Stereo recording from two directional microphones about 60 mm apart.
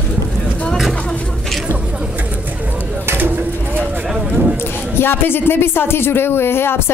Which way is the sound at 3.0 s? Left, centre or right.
Right.